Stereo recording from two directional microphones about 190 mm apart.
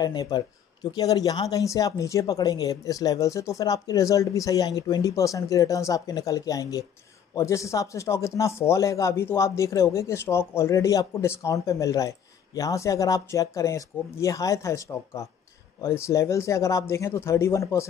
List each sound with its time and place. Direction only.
0.0 s speech: 20° left (ahead or behind)